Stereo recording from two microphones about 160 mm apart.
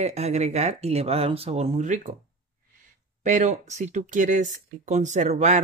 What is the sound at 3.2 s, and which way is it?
Speech, 50° right (ahead or behind).